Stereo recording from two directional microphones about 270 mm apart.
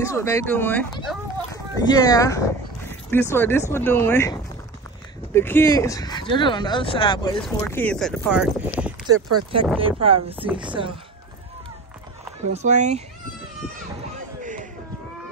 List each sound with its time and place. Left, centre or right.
0.0 s speech: centre
7.6 s speech: centre
9.1 s speech: right
9.8 s a woman's voice: centre
12.4 s speech: right
14.4 s a sound: right